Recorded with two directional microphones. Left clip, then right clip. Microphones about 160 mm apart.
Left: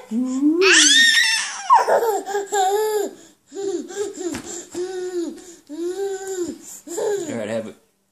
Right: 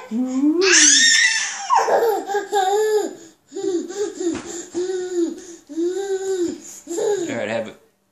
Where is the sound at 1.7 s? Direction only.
Centre (ahead or behind).